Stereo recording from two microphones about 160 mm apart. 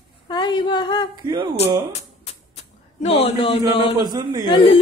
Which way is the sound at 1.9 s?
40° left (ahead or behind).